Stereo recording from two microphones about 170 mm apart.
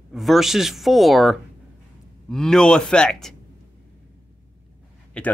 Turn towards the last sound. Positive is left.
turn(degrees=5)  # may be behind; listen again after turning